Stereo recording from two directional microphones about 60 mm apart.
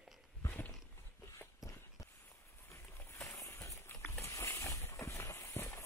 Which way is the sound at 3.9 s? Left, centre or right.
Left.